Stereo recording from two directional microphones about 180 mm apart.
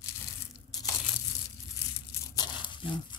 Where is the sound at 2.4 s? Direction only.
25° left (ahead or behind).